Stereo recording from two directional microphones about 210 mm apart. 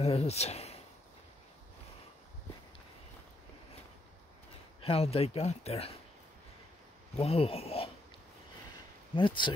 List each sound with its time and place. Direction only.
0.0 s speech: 30° left (ahead or behind)
4.8 s speech: 30° left (ahead or behind)
7.2 s speech: 30° left (ahead or behind)
9.1 s speech: 25° left (ahead or behind)